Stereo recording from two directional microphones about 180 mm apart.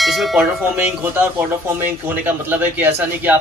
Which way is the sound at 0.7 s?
10° right (ahead or behind).